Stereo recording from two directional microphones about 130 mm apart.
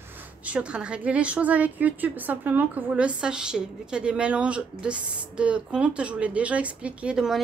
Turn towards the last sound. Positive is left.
turn(degrees=-5)  # may be behind; listen again after turning